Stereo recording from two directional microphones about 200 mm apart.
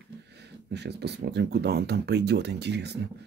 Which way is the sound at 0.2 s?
55° right (ahead or behind).